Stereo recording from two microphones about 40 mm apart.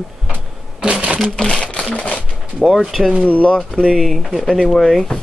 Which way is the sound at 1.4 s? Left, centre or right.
Left.